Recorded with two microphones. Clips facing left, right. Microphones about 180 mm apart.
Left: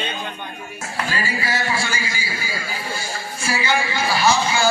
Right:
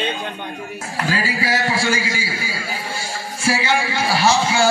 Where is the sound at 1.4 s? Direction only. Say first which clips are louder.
Right 7 dB; 90° right.